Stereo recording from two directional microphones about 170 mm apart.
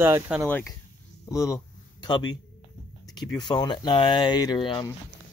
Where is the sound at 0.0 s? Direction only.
15° right (ahead or behind).